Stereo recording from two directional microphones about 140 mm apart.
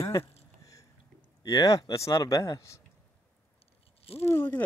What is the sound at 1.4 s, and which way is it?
Speech, 25° left (ahead or behind).